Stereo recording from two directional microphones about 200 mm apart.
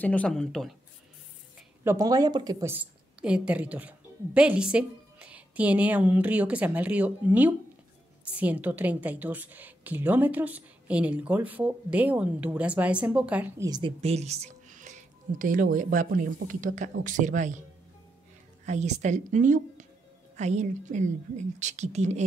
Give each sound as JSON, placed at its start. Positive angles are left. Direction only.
{"t": 0.0, "sound": "speech", "side_deg": 5}
{"t": 1.9, "sound": "a woman's voice", "side_deg": -15}
{"t": 13.7, "sound": "speech", "side_deg": -25}
{"t": 18.7, "sound": "speech", "side_deg": -35}